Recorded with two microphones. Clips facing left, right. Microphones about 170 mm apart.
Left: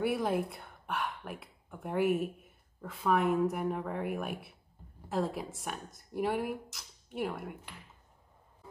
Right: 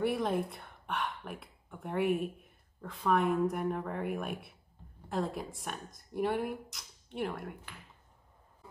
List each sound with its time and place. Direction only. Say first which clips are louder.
0.0 s speech: even; 5° left (ahead or behind)